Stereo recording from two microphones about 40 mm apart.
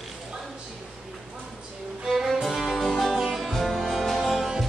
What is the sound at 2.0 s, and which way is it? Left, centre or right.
Music, centre.